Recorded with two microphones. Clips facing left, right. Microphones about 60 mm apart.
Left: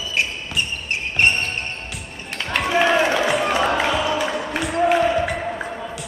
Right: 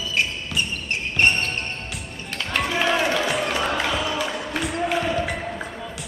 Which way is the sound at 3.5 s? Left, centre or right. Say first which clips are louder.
Left 4 dB; centre.